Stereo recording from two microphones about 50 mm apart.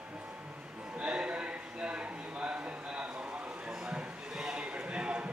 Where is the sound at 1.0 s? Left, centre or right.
Right.